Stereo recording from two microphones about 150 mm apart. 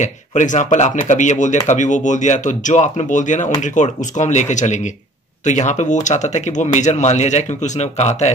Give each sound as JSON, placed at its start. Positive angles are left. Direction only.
{"t": 0.0, "sound": "speech", "side_deg": 55}